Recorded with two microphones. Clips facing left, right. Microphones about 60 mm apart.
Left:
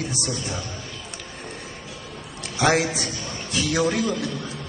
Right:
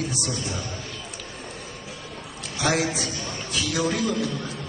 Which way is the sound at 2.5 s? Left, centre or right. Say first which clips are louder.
Left 3 dB; left.